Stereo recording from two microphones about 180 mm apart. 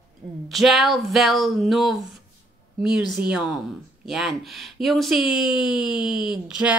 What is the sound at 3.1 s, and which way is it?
Speech, 5° right (ahead or behind).